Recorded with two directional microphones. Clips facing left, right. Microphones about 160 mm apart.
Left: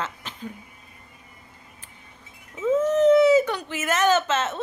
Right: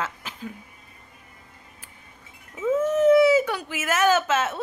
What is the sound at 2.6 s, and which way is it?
Speech, 10° right (ahead or behind).